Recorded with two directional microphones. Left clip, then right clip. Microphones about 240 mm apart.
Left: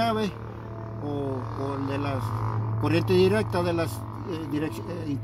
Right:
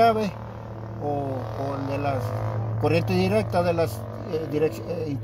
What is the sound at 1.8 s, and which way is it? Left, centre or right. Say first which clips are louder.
Speech: right 3 dB; right.